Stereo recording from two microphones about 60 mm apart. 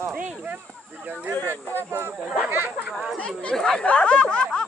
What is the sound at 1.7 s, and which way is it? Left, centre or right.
Speech, right.